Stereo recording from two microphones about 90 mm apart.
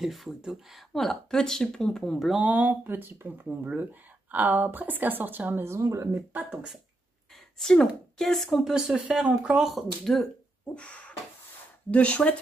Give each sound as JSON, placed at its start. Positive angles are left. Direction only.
{"t": 0.0, "sound": "speech", "side_deg": 0}
{"t": 2.4, "sound": "speech", "side_deg": -15}
{"t": 6.5, "sound": "speech", "side_deg": -10}
{"t": 7.5, "sound": "speech", "side_deg": 5}
{"t": 10.7, "sound": "a sound", "side_deg": 10}
{"t": 11.9, "sound": "speech", "side_deg": 15}